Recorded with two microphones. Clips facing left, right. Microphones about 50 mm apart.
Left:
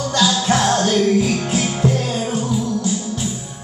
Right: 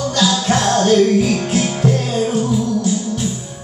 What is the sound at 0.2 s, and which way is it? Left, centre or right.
Music, centre.